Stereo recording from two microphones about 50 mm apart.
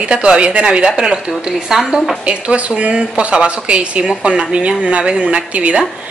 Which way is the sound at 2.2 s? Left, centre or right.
Right.